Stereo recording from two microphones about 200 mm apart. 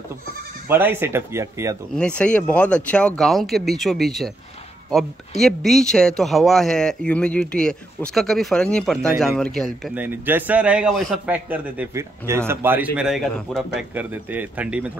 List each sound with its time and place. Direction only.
0.7 s a man's voice: 10° right (ahead or behind)
2.0 s speech: 5° left (ahead or behind)
5.4 s speech: centre (ahead or behind)
9.9 s a man's voice: 10° right (ahead or behind)